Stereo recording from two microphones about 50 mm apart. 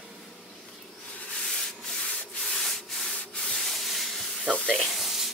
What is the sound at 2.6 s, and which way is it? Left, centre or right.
Rub, centre.